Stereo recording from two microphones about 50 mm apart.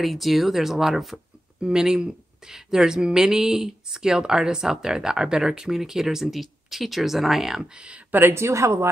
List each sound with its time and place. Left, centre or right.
0.0 s speech: centre
7.7 s speech: right
8.1 s speech: right
8.4 s speech: right